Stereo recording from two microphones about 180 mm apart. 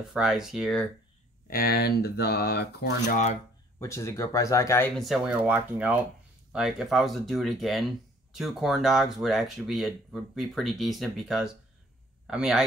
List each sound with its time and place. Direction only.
0.1 s speech: centre (ahead or behind)
1.5 s speech: 55° left (ahead or behind)
3.8 s speech: 15° left (ahead or behind)
5.0 s speech: centre (ahead or behind)